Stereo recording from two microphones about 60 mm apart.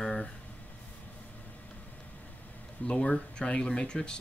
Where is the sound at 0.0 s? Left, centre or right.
Centre.